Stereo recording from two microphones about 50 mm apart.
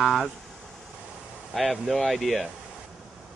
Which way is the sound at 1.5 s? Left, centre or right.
Centre.